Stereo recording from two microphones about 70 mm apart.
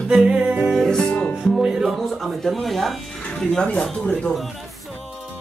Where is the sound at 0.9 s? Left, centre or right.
Centre.